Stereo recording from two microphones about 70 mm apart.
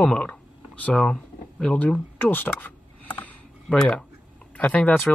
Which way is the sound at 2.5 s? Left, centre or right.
Left.